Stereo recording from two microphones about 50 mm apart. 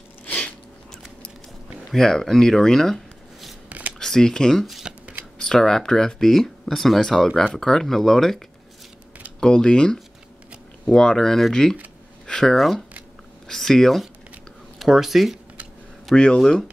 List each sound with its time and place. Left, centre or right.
1.9 s speech: centre
3.6 s shuffling cards: right
4.0 s speech: centre
4.9 s shuffling cards: centre
5.4 s speech: centre
9.4 s speech: centre
12.3 s a sound: centre
12.5 s speech: centre
14.8 s speech: centre
16.2 s speech: centre